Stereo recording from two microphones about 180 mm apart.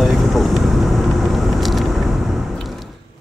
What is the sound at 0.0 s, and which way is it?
Vehicle, centre (ahead or behind).